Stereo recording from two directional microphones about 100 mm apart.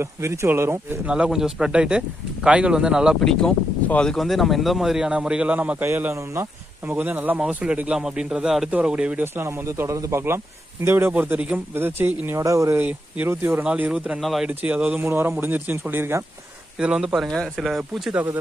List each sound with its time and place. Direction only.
0.0 s a man's voice: 30° right (ahead or behind)
1.0 s speech: 10° right (ahead or behind)
3.2 s speech: 5° left (ahead or behind); by 5.9 s 15° right (ahead or behind)
5.9 s a man's voice: 25° right (ahead or behind)
9.2 s a man's voice: 25° right (ahead or behind)
12.4 s speech: 35° right (ahead or behind)
12.7 s a man's voice: 20° right (ahead or behind)
13.7 s speech: 10° right (ahead or behind)
14.5 s a man's voice: 15° right (ahead or behind)
16.8 s speech: 5° right (ahead or behind)